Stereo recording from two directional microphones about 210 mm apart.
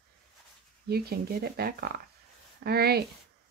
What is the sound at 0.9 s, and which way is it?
A woman's voice, 50° right (ahead or behind).